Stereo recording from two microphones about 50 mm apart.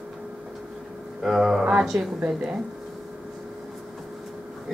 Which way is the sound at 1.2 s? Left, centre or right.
Centre.